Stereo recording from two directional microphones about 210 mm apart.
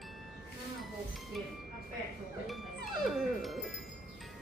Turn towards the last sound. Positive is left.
turn(degrees=0)  # may be behind; listen again after turning